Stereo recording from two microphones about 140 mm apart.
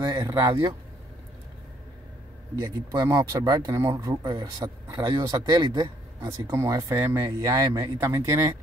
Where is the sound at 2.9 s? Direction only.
25° right (ahead or behind).